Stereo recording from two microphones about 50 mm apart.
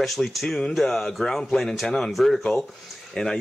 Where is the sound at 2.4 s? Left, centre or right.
Centre.